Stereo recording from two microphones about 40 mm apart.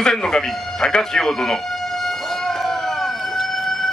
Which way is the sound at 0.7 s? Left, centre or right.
Centre.